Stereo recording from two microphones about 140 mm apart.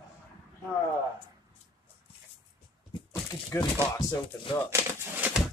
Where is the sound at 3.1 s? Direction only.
20° left (ahead or behind).